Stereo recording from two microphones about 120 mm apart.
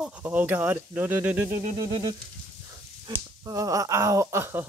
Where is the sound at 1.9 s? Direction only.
40° right (ahead or behind).